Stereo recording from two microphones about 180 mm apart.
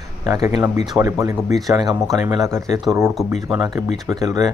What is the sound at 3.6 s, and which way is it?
Speech, 20° right (ahead or behind).